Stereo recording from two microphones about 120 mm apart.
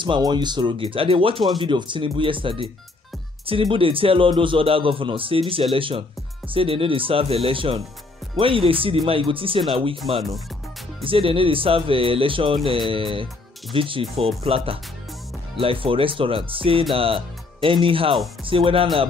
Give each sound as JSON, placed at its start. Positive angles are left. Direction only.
{"t": 0.0, "sound": "a man's voice", "side_deg": -40}